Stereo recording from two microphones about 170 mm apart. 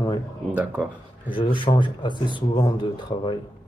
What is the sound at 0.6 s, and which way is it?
Speech, 10° right (ahead or behind).